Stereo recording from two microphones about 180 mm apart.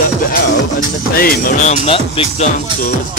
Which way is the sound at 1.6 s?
30° left (ahead or behind).